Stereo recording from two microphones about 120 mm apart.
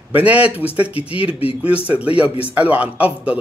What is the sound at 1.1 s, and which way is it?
Speech, 55° left (ahead or behind).